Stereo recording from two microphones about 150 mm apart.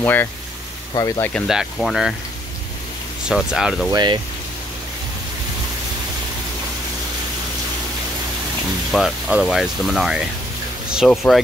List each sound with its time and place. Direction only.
0.0 s speech: 15° left (ahead or behind)
0.9 s speech: 25° left (ahead or behind)
1.5 s speech: centre (ahead or behind)
3.3 s speech: 5° right (ahead or behind)
3.9 s speech: 30° right (ahead or behind)
8.9 s speech: centre (ahead or behind)